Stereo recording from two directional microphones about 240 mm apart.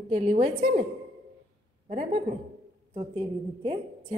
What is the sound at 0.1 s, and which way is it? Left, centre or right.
Speech, right.